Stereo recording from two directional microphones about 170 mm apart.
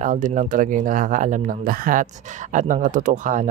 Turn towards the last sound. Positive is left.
turn(degrees=-50)  # may be behind; listen again after turning